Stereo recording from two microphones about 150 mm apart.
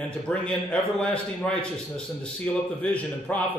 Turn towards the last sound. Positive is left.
turn(degrees=10)  # may be behind; listen again after turning